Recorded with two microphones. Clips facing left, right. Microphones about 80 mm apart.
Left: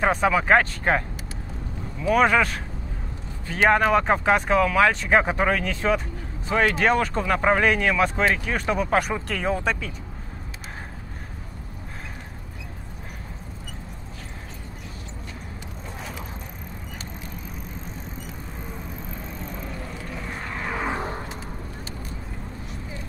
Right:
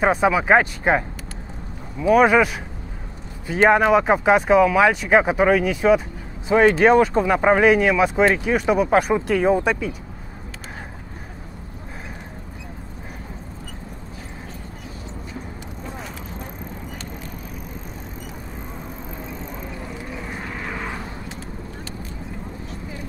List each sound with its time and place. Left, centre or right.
0.0 s speech: centre
3.6 s speech: centre
19.6 s vehicle: centre
20.6 s vehicle: centre